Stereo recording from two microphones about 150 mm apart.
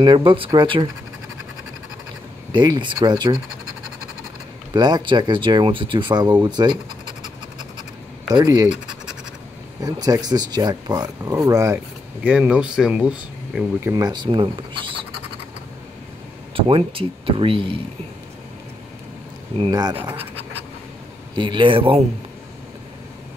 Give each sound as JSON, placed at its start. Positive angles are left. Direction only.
{"t": 0.0, "sound": "speech", "side_deg": -35}
{"t": 2.5, "sound": "speech", "side_deg": -30}
{"t": 4.7, "sound": "speech", "side_deg": -30}
{"t": 8.4, "sound": "speech", "side_deg": -25}
{"t": 8.6, "sound": "scratch", "side_deg": -5}
{"t": 9.8, "sound": "speech", "side_deg": -25}
{"t": 13.9, "sound": "speech", "side_deg": -30}
{"t": 16.5, "sound": "speech", "side_deg": -35}
{"t": 19.7, "sound": "speech", "side_deg": -25}
{"t": 21.4, "sound": "speech", "side_deg": -30}